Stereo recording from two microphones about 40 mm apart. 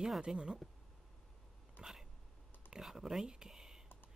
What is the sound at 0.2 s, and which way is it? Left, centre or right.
Speech, right.